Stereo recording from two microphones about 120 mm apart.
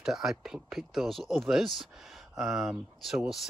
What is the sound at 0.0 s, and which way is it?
Speech, 5° right (ahead or behind).